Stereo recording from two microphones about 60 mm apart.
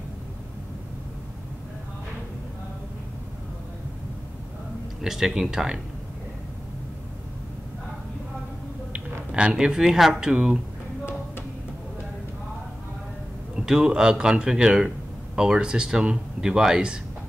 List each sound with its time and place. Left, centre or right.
5.0 s speech: centre
8.9 s speech: centre
13.6 s speech: centre